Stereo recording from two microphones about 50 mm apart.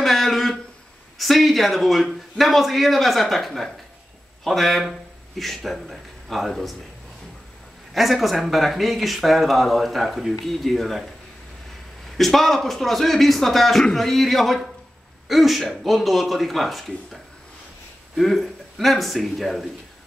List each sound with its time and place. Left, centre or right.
0.0 s a sound: centre
1.1 s speech: centre
7.9 s speech: centre
12.2 s speech: centre